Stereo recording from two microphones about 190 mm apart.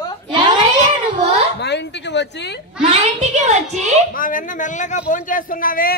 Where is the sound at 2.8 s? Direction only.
35° right (ahead or behind).